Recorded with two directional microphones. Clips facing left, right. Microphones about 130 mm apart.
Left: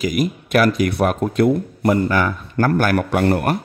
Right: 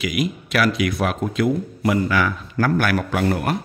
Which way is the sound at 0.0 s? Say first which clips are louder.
Left 3 dB; 45° left (ahead or behind).